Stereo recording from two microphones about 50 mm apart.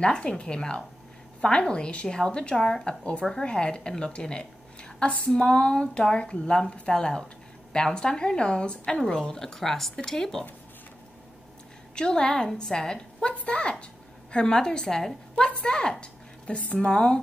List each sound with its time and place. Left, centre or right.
0.0 s a woman's voice: centre
11.9 s a woman's voice: centre